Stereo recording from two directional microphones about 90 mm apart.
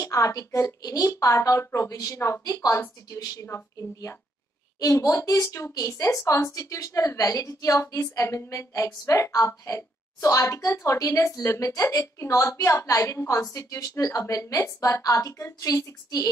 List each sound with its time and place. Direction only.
0.0 s a woman's voice: 35° left (ahead or behind)
3.4 s a woman's voice: 30° left (ahead or behind)